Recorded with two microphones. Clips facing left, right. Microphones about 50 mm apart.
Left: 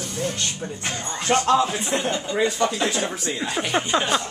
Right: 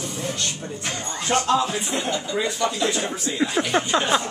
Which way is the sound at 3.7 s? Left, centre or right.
Centre.